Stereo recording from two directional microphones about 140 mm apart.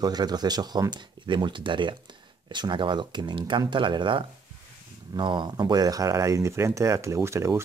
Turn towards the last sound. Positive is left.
turn(degrees=-20)  # may be behind; listen again after turning